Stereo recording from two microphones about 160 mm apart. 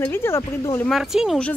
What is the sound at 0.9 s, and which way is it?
Speech, centre (ahead or behind).